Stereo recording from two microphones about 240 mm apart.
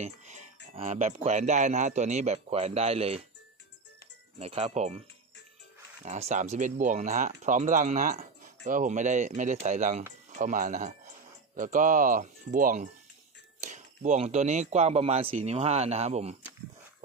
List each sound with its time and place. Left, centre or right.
0.0 s a sound: right
0.7 s speech: right
4.4 s speech: right
6.0 s speech: right